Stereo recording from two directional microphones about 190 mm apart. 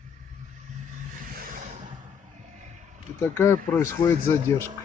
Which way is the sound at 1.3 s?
50° right (ahead or behind).